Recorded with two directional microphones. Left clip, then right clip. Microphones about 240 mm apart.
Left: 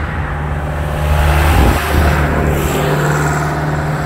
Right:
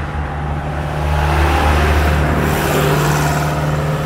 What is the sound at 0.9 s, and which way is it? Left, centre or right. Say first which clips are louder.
Vehicle: left 2 dB; left.